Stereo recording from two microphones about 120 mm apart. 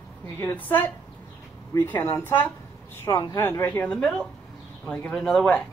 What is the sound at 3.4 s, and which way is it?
A man's voice, 15° left (ahead or behind).